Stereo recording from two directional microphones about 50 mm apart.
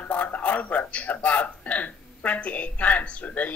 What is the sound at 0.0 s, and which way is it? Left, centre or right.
A man's voice, left.